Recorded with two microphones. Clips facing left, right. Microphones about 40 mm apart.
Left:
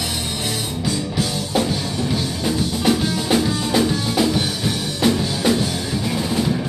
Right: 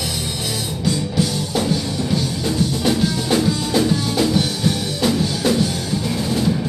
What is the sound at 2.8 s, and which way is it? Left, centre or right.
Music, centre.